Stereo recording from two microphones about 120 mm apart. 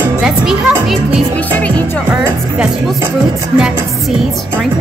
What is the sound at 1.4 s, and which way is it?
Music, 10° left (ahead or behind).